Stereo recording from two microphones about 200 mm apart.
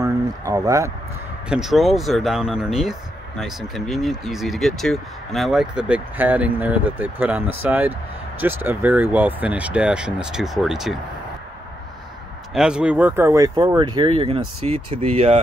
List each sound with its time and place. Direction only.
0.0 s speech: 15° right (ahead or behind)
1.5 s speech: centre (ahead or behind)
12.5 s speech: 5° right (ahead or behind); by 15.3 s 35° right (ahead or behind)